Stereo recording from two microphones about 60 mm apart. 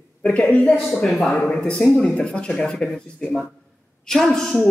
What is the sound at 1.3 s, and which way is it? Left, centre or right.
Speech, centre.